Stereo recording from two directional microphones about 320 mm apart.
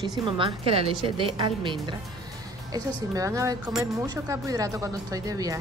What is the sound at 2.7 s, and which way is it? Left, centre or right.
A woman's voice, centre.